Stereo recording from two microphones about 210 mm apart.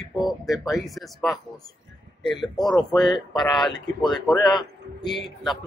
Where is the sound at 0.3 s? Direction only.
Centre (ahead or behind).